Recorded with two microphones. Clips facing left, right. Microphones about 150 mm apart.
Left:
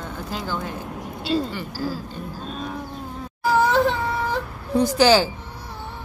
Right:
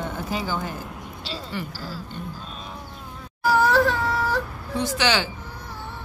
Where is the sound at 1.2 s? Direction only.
50° left (ahead or behind).